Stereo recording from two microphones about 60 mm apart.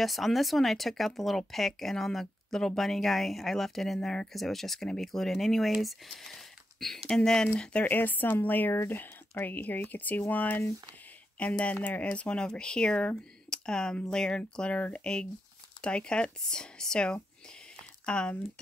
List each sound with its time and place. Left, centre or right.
0.0 s speech: centre
7.8 s a woman's voice: left; by 18.3 s centre